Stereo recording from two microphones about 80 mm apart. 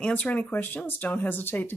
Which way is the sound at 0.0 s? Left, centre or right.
Centre.